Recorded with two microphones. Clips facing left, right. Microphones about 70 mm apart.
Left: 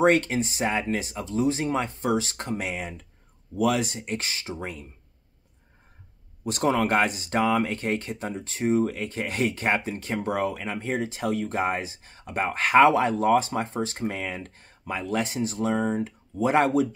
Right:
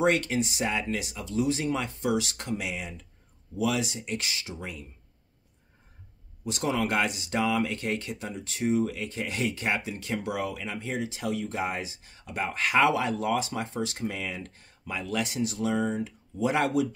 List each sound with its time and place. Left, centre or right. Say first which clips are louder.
0.0 s speech: left 4 dB; left
6.4 s speech: left 5 dB; left